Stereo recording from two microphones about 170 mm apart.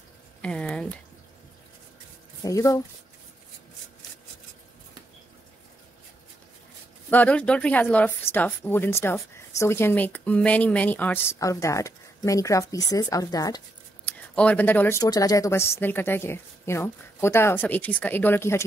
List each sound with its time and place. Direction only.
0.4 s a sound: 5° left (ahead or behind)
2.4 s speech: 20° left (ahead or behind)
7.1 s speech: 10° left (ahead or behind)
14.0 s speech: 10° left (ahead or behind)